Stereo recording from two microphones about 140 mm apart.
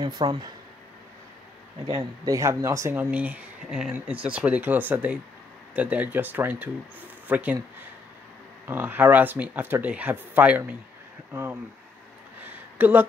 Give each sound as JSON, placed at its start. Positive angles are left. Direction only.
{"t": 0.0, "sound": "speech", "side_deg": -30}
{"t": 1.9, "sound": "speech", "side_deg": -25}
{"t": 8.6, "sound": "speech", "side_deg": -15}
{"t": 12.7, "sound": "speech", "side_deg": -15}